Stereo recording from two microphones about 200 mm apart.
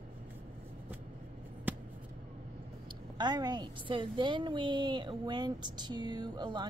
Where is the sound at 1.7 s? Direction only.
10° right (ahead or behind).